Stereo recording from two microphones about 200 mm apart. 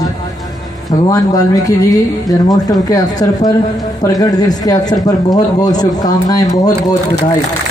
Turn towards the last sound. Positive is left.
turn(degrees=20)  # may be behind; listen again after turning